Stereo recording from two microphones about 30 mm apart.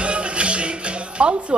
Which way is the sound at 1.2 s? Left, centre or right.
Right.